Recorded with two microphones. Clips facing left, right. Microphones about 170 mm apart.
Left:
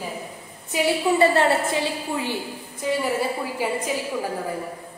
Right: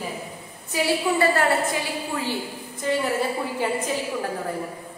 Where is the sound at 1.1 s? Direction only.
20° left (ahead or behind).